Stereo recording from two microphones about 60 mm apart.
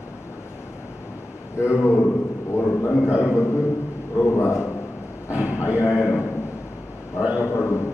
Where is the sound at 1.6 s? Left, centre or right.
Left.